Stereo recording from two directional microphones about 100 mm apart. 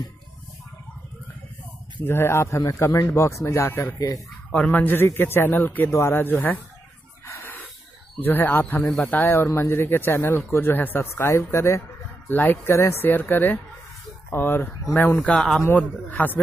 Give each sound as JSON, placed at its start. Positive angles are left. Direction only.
{"t": 2.0, "sound": "a man's voice", "side_deg": 25}
{"t": 4.5, "sound": "a man's voice", "side_deg": 15}
{"t": 7.2, "sound": "chicken", "side_deg": 20}
{"t": 8.2, "sound": "a man's voice", "side_deg": 20}
{"t": 8.8, "sound": "speech", "side_deg": 0}
{"t": 9.1, "sound": "a man's voice", "side_deg": 20}
{"t": 15.2, "sound": "speech", "side_deg": 5}
{"t": 15.6, "sound": "a man's voice", "side_deg": 15}